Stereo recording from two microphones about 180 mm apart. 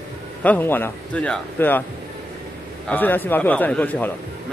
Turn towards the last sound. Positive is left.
turn(degrees=10)  # may be behind; listen again after turning